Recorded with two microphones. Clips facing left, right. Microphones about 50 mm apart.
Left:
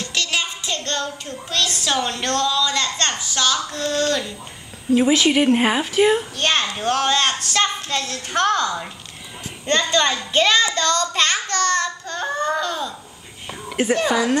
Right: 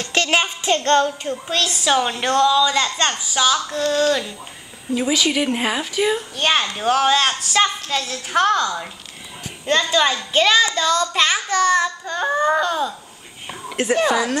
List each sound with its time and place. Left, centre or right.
0.1 s child singing: right
1.7 s a child's voice: centre
4.9 s speech: centre
6.3 s a child's voice: centre
13.9 s a child's voice: centre